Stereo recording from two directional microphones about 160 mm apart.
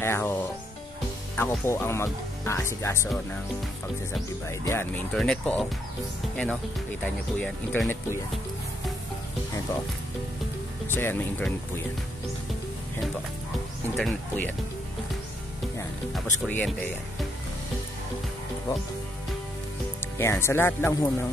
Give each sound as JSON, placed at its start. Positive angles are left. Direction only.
{"t": 0.0, "sound": "speech", "side_deg": 15}
{"t": 4.5, "sound": "speech", "side_deg": 15}
{"t": 5.1, "sound": "speech", "side_deg": 5}
{"t": 10.9, "sound": "speech", "side_deg": 15}
{"t": 13.9, "sound": "speech", "side_deg": 5}
{"t": 16.4, "sound": "speech", "side_deg": 10}
{"t": 20.2, "sound": "speech", "side_deg": 15}